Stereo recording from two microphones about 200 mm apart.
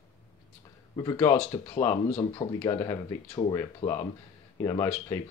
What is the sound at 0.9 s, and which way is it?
Speech, 20° left (ahead or behind).